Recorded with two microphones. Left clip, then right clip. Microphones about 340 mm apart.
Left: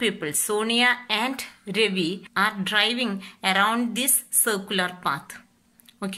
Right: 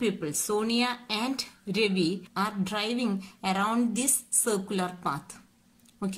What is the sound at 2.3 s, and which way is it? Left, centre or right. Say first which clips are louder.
A woman's voice: left 11 dB; centre.